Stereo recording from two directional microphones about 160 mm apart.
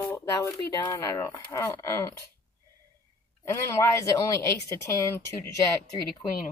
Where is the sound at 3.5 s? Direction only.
15° left (ahead or behind).